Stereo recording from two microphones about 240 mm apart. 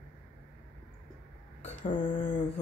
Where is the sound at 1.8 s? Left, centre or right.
Left.